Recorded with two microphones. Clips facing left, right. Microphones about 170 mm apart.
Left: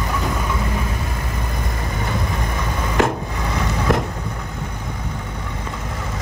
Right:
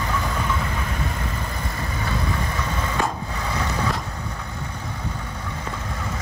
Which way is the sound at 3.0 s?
85° left.